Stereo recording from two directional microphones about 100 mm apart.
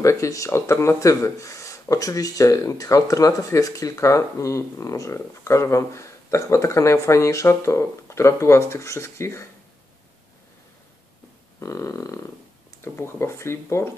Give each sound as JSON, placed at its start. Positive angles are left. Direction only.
{"t": 0.0, "sound": "speech", "side_deg": 35}
{"t": 11.6, "sound": "speech", "side_deg": 30}